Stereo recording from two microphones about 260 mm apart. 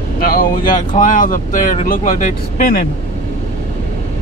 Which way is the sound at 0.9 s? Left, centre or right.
Left.